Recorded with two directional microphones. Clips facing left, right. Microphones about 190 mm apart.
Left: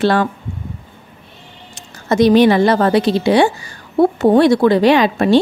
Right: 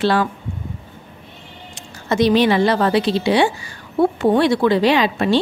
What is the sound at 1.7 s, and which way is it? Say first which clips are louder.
A woman's voice: left 4 dB; 45° left (ahead or behind).